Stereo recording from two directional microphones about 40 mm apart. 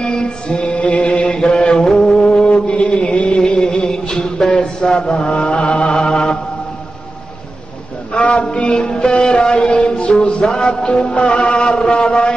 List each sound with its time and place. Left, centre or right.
0.0 s mantra: left
1.3 s mantra: centre
3.8 s music: centre
8.1 s a sound: left
8.5 s music: left
10.2 s music: left